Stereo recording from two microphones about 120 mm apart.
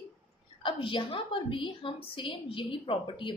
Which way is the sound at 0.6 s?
45° left (ahead or behind).